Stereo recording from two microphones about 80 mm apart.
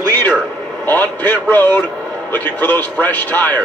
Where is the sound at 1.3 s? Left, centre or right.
Left.